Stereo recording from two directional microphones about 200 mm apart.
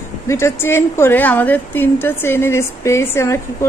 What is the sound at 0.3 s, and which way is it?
A woman's voice, 15° left (ahead or behind).